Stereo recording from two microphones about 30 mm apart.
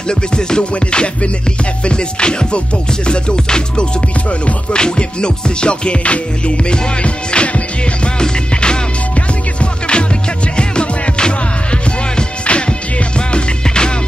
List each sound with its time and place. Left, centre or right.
0.1 s music: left
0.7 s music: left
12.4 s music: left